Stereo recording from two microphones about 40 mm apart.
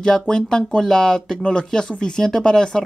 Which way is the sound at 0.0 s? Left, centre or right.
Centre.